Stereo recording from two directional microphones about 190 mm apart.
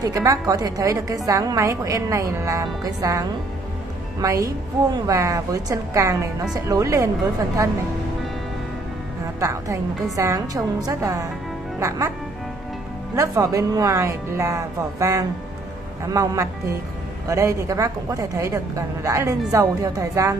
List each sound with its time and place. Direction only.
0.0 s a woman's voice: 20° right (ahead or behind)
9.4 s speech: 15° right (ahead or behind)
13.1 s speech: 15° right (ahead or behind)